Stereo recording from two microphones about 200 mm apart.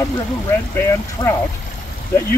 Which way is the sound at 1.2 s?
25° left (ahead or behind).